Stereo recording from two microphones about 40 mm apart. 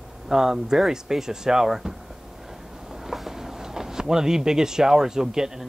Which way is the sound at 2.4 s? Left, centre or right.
Centre.